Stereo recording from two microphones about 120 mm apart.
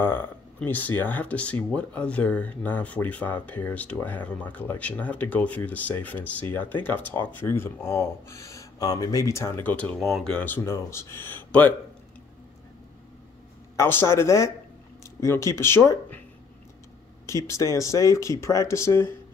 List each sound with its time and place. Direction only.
0.0 s speech: 15° left (ahead or behind)
9.9 s speech: centre (ahead or behind); by 11.7 s 15° left (ahead or behind)
13.7 s speech: 20° left (ahead or behind)
17.3 s speech: 25° left (ahead or behind)